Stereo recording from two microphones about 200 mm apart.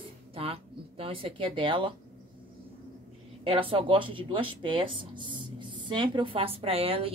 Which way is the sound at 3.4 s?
25° right (ahead or behind).